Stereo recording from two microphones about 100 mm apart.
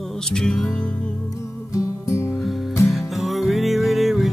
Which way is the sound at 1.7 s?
30° left (ahead or behind).